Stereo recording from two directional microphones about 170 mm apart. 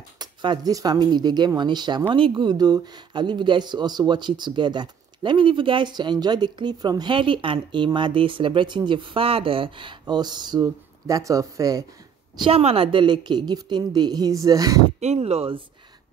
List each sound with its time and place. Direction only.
0.2 s speech: 25° right (ahead or behind)
12.4 s speech: 35° right (ahead or behind); by 14.8 s 20° right (ahead or behind)
15.0 s speech: 40° right (ahead or behind)